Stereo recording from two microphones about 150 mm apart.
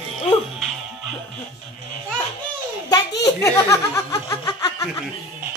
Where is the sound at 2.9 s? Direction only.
20° left (ahead or behind).